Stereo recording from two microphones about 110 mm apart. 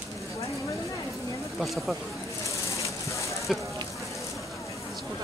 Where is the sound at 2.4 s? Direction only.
30° left (ahead or behind).